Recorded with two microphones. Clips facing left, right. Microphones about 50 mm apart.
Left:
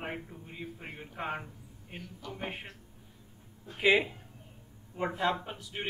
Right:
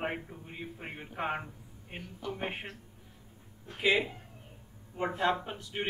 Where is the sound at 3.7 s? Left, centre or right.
Centre.